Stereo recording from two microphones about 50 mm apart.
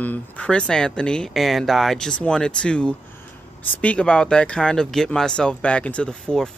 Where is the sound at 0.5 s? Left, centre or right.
Centre.